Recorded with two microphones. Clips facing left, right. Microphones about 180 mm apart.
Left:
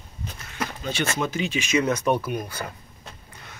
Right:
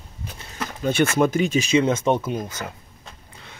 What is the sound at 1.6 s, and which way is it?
Speech, 25° right (ahead or behind).